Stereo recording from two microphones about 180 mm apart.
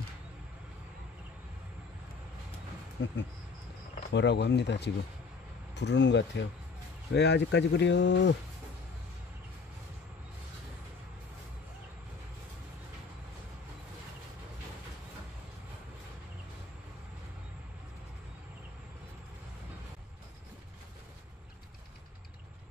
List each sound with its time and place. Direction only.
3.0 s speech: 85° left
4.1 s speech: 75° left (ahead or behind)